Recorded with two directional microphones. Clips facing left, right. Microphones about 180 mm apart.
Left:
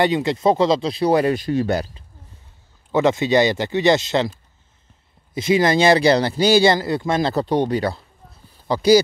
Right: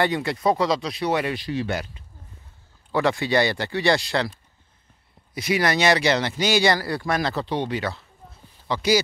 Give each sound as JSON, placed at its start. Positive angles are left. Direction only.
{"t": 0.0, "sound": "speech", "side_deg": 20}
{"t": 2.9, "sound": "speech", "side_deg": 20}
{"t": 5.3, "sound": "speech", "side_deg": 25}
{"t": 7.3, "sound": "speech", "side_deg": 45}